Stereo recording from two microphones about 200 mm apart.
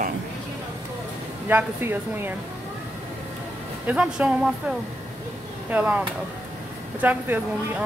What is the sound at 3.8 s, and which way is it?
Speech, 5° right (ahead or behind).